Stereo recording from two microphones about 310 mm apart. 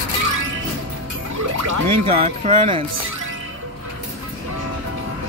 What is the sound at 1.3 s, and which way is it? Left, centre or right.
Music, right.